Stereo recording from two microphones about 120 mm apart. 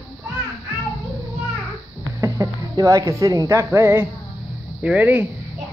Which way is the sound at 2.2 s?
25° right (ahead or behind).